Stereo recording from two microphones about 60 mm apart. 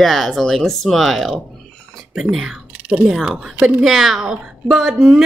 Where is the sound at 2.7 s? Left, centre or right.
Centre.